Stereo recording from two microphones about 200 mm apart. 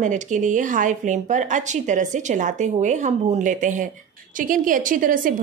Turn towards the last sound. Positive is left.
turn(degrees=-45)  # may be behind; listen again after turning